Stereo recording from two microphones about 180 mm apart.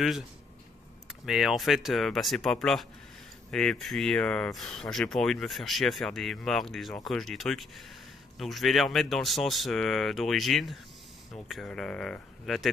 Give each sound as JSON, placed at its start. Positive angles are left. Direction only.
{"t": 1.0, "sound": "speech", "side_deg": 0}